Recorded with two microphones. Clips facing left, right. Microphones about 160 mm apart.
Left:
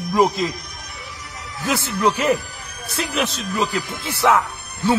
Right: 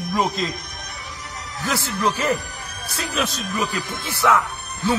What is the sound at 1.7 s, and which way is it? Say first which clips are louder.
Speech: left 3 dB; 20° left (ahead or behind).